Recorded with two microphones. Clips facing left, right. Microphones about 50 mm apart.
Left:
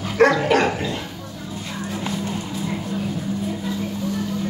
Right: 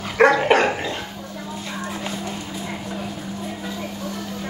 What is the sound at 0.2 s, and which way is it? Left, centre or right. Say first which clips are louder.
Dog: right 1 dB; centre.